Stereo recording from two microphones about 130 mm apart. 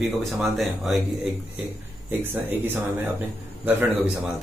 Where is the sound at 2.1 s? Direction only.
15° right (ahead or behind).